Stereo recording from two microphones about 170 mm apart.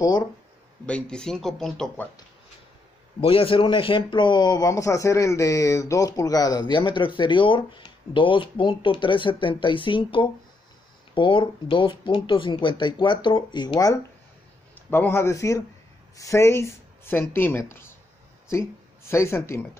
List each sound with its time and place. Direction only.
0.8 s speech: 5° left (ahead or behind)
3.2 s speech: 35° left (ahead or behind)
14.9 s speech: 15° left (ahead or behind)